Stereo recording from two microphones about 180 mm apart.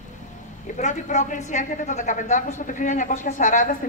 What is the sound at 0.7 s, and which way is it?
A woman's voice, 40° left (ahead or behind).